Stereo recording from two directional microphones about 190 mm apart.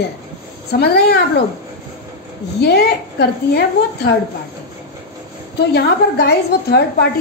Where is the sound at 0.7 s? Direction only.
55° left (ahead or behind).